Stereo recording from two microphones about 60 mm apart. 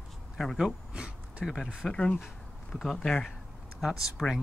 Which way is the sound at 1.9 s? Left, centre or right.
Centre.